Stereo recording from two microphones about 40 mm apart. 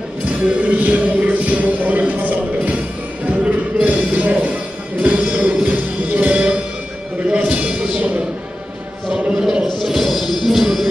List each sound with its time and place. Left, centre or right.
0.4 s speech: right
3.3 s music: right
7.2 s a sound: right
7.9 s music: right
9.1 s chant: centre
9.7 s music: centre